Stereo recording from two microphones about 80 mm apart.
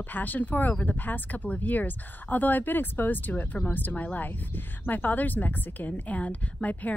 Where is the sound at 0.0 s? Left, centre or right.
Left.